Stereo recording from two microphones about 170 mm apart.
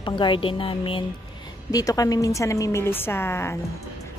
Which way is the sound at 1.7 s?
20° left (ahead or behind).